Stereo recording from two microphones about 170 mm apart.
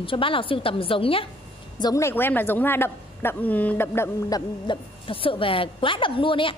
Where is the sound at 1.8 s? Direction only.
20° left (ahead or behind).